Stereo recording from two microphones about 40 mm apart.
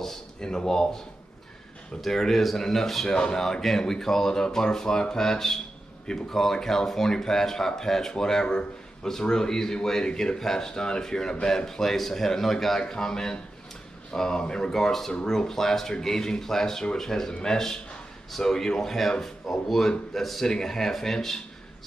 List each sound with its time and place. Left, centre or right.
0.0 s speech: centre
3.1 s speech: centre